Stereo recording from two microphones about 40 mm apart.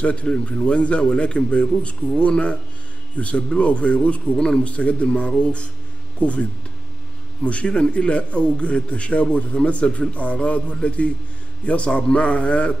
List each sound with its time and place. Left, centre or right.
0.0 s a man's voice: left
7.4 s a man's voice: left